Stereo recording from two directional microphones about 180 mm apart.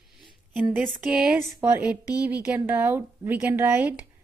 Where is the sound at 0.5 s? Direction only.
5° right (ahead or behind).